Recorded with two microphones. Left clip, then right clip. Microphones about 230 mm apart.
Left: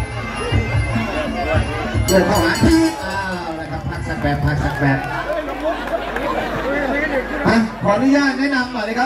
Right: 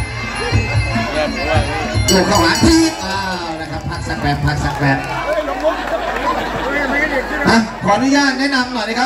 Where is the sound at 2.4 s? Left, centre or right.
Right.